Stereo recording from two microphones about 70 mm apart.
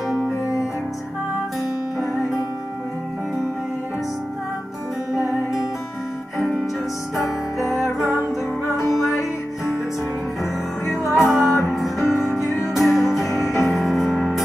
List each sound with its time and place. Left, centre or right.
0.1 s music: centre
7.7 s music: centre
10.4 s music: left
11.3 s music: centre